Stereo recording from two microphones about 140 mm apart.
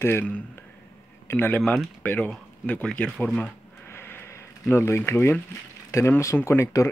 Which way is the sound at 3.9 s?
15° left (ahead or behind).